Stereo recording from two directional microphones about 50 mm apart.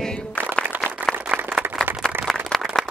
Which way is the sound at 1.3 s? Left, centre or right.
Right.